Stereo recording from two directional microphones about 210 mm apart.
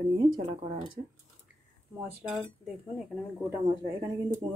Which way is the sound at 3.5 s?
15° right (ahead or behind).